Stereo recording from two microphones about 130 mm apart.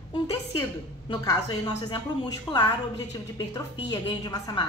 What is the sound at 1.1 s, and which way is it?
A woman's voice, 35° left (ahead or behind).